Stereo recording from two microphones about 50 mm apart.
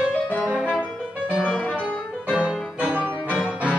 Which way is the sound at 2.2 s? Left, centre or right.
Right.